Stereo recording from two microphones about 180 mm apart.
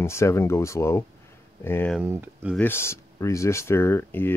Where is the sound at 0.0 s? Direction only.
15° left (ahead or behind).